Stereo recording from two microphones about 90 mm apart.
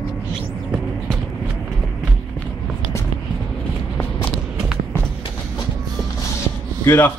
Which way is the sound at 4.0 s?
15° left (ahead or behind).